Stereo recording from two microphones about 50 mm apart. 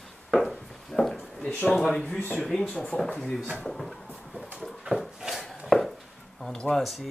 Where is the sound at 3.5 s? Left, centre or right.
Centre.